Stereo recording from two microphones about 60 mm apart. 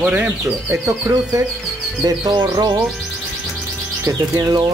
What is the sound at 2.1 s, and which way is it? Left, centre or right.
Speech, right.